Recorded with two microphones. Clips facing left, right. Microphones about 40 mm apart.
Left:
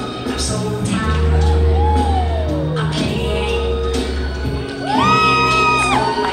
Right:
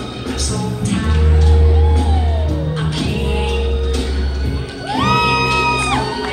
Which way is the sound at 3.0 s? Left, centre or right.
Centre.